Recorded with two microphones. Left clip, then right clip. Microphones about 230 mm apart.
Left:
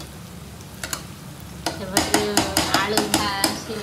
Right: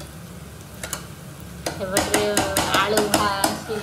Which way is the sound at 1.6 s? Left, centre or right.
Centre.